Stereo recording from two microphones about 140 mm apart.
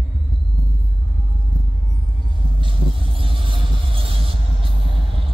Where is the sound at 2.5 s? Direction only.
35° right (ahead or behind).